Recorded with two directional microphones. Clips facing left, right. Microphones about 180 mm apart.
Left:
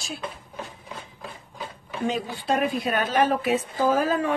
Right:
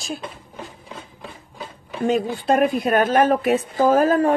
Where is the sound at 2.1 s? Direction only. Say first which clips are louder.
Right 7 dB; 50° right (ahead or behind).